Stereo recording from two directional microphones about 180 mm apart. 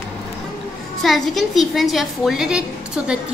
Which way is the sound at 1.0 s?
Centre (ahead or behind).